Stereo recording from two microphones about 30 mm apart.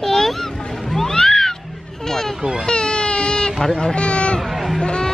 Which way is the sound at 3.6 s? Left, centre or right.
Centre.